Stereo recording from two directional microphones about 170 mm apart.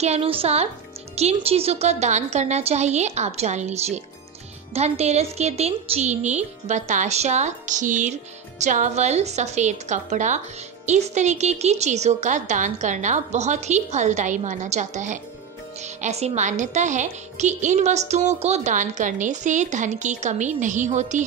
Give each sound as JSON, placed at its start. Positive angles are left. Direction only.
{"t": 0.0, "sound": "a woman's voice", "side_deg": -35}